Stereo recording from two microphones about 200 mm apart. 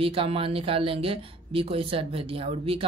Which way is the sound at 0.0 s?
25° right (ahead or behind).